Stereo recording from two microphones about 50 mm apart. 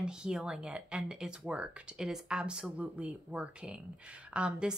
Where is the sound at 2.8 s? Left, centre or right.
Right.